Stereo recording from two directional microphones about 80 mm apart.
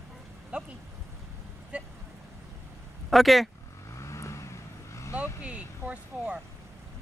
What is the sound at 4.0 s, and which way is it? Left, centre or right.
Vehicle, left.